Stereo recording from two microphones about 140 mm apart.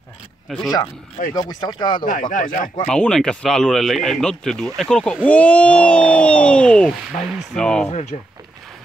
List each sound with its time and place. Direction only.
1.5 s speech: 30° left (ahead or behind)
2.0 s speech: 70° left (ahead or behind)
2.9 s speech: 5° left (ahead or behind)
7.9 s speech: 50° left (ahead or behind)